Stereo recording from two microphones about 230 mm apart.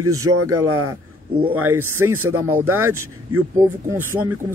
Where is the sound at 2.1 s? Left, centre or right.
Right.